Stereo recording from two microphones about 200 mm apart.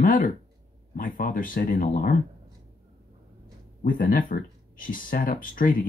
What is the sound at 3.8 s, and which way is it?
Speech, 45° left (ahead or behind).